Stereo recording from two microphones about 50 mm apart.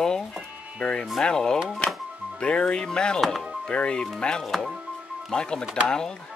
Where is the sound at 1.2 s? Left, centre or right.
Centre.